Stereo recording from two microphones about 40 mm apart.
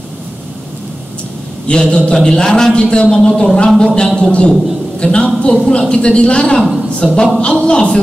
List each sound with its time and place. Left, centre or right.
1.7 s a man's voice: left